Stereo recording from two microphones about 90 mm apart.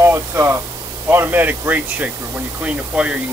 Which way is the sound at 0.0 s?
30° right (ahead or behind).